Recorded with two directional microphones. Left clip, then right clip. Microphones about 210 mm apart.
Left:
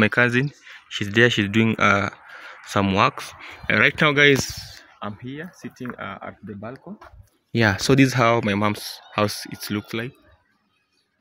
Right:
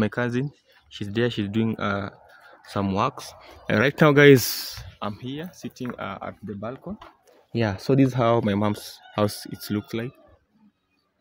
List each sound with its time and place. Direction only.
0.0 s speech: 10° left (ahead or behind)
3.3 s speech: 20° right (ahead or behind)
4.2 s speech: 45° right (ahead or behind)
4.9 s speech: 15° right (ahead or behind)
7.5 s speech: 10° left (ahead or behind)
8.2 s speech: 10° right (ahead or behind)